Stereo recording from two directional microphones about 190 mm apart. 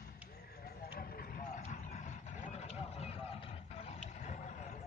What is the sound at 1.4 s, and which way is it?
Vehicle, 40° left (ahead or behind).